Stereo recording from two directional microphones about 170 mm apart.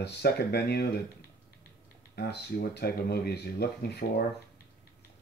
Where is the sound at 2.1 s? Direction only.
70° left (ahead or behind).